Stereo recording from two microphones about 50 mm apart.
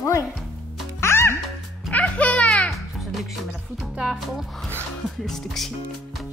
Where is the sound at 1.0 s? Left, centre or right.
Left.